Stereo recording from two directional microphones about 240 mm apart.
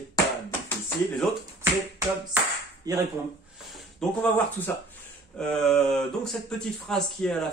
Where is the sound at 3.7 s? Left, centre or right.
Centre.